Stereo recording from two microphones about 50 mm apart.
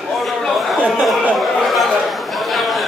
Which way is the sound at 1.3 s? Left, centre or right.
Centre.